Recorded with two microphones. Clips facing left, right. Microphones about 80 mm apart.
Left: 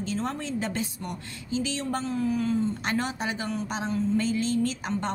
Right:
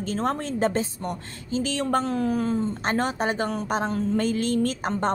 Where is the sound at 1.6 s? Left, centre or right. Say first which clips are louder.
Right 8 dB; right.